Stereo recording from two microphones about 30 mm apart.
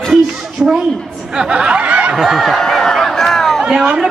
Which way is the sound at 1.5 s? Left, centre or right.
Right.